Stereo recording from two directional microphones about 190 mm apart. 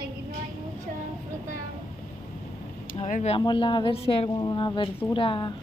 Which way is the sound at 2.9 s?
35° left (ahead or behind).